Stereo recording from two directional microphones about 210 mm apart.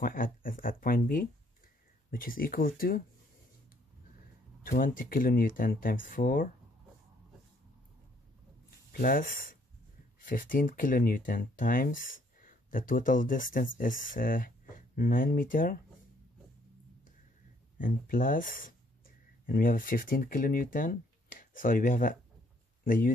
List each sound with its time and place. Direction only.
0.0 s speech: 40° left (ahead or behind)
4.6 s speech: 40° left (ahead or behind)
8.6 s a sound: 45° left (ahead or behind)
10.2 s speech: 40° left (ahead or behind)
17.7 s speech: 40° left (ahead or behind)